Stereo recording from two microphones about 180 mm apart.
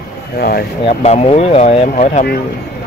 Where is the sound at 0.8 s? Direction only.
35° left (ahead or behind).